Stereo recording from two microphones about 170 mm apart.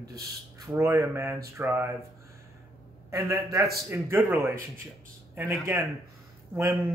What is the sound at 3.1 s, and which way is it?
A man's voice, 20° right (ahead or behind).